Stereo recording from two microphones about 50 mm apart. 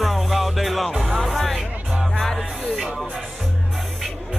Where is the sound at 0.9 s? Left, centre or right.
Centre.